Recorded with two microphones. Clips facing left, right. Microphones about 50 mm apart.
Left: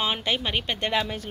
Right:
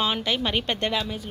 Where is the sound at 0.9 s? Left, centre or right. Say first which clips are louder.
Left 2 dB; left.